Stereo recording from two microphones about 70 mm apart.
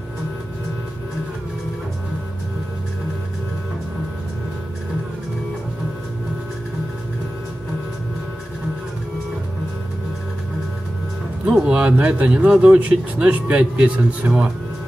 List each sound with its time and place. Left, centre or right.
11.6 s speech: centre